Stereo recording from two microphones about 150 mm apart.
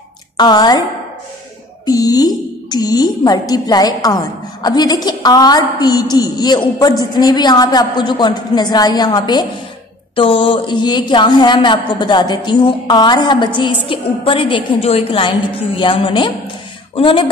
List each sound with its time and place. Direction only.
0.4 s a woman's voice: 30° left (ahead or behind)
1.9 s a woman's voice: 25° left (ahead or behind)